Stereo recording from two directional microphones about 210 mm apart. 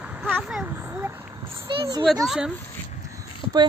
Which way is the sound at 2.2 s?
5° right (ahead or behind).